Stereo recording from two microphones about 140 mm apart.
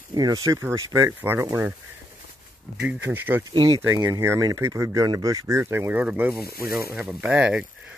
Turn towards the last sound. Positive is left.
turn(degrees=-10)  # may be behind; listen again after turning